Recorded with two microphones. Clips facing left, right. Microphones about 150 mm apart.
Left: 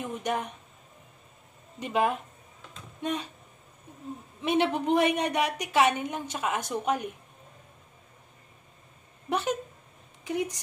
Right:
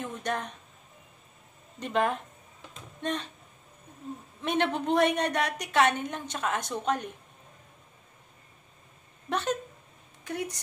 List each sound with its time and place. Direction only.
0.0 s speech: 10° left (ahead or behind)
1.8 s a woman's voice: 10° left (ahead or behind)
4.4 s a woman's voice: 10° left (ahead or behind)
9.3 s a woman's voice: 10° left (ahead or behind)